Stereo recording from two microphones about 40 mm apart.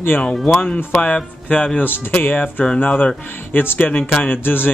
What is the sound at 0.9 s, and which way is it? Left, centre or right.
Speech, left.